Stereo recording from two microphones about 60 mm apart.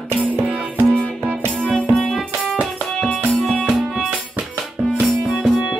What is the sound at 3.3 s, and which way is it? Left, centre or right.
Music, centre.